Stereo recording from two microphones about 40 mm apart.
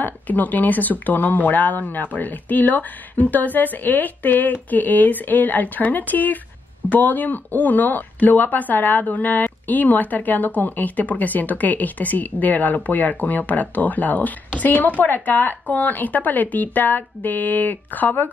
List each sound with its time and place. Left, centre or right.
0.0 s speech: left